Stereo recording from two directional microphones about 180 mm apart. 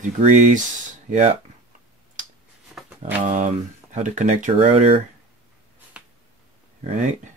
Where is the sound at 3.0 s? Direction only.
40° right (ahead or behind).